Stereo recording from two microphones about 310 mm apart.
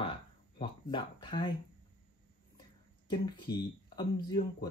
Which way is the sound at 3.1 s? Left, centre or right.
Centre.